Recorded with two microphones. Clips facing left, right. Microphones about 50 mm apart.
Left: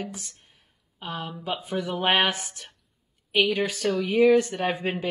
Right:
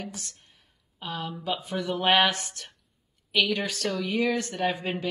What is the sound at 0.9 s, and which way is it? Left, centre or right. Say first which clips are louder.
Speech: even; centre.